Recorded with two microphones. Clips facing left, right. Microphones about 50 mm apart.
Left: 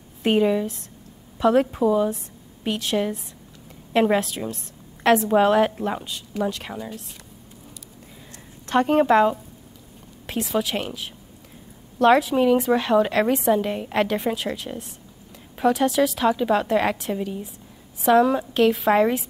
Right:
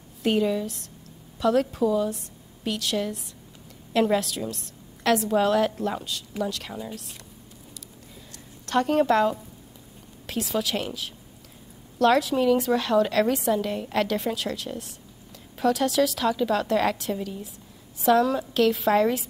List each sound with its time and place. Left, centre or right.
0.2 s a woman's voice: left
8.6 s a woman's voice: left
10.4 s a woman's voice: centre